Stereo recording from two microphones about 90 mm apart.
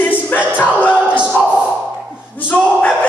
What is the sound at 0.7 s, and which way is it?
Music, 15° right (ahead or behind).